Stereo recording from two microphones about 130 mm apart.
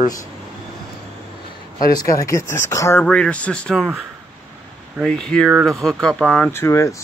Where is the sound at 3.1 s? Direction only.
10° left (ahead or behind).